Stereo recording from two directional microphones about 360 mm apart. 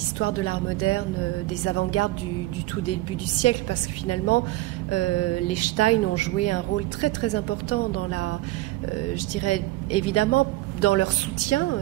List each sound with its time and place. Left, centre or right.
0.2 s speech: left
4.9 s speech: left